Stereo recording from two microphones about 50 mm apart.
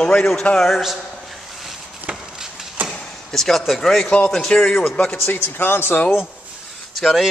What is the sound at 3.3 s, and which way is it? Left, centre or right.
A man's voice, centre.